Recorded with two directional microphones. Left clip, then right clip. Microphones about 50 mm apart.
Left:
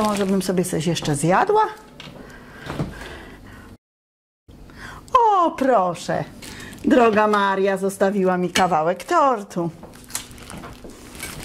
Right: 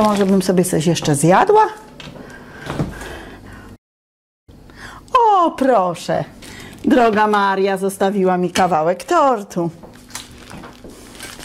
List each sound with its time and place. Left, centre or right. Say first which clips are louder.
0.0 s speech: right 6 dB; centre
0.4 s speech: right 6 dB; right
2.0 s a sound: right 4 dB; right
3.1 s a sound: right 5 dB; right
4.8 s wail: right 3 dB; right
5.6 s speech: right 3 dB; right